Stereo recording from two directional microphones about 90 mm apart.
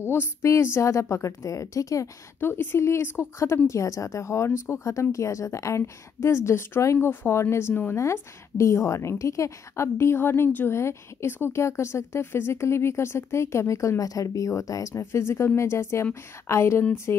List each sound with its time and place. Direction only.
0.0 s a woman's voice: 25° left (ahead or behind)
2.4 s a woman's voice: 25° left (ahead or behind)